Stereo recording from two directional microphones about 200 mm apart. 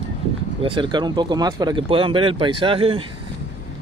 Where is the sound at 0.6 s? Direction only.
25° right (ahead or behind).